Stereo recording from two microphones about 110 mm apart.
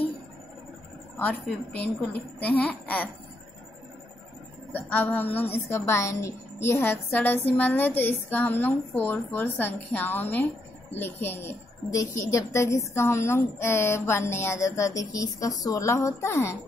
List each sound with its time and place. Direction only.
1.8 s a child's voice: 15° left (ahead or behind)
4.7 s a woman's voice: 15° left (ahead or behind)